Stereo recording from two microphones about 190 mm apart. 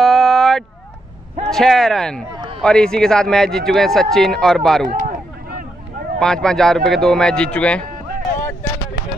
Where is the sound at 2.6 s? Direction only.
5° left (ahead or behind).